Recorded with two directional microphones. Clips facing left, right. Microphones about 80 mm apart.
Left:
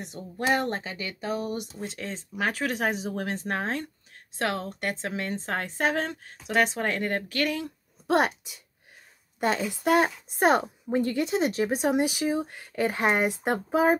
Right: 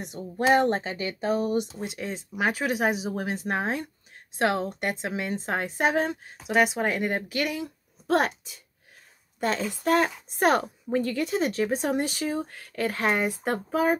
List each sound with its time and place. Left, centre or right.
0.0 s speech: right
1.8 s speech: centre
9.4 s speech: centre